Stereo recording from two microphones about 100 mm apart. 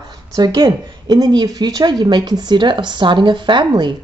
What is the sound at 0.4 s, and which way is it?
Speech, 40° right (ahead or behind).